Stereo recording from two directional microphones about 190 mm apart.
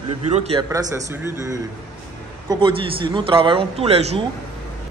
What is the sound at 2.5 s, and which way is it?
A man's voice, 25° right (ahead or behind).